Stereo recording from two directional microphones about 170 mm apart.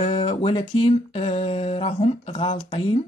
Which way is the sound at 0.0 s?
35° left (ahead or behind).